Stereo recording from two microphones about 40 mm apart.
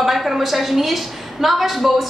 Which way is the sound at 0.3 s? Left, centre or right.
Centre.